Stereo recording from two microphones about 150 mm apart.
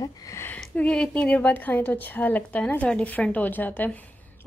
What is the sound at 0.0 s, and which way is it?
Speech, 20° left (ahead or behind).